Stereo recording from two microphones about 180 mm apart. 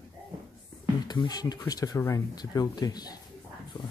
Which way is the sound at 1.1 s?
20° left (ahead or behind).